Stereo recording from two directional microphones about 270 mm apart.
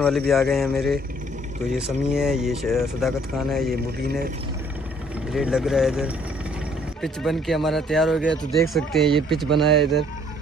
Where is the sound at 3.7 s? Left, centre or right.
Right.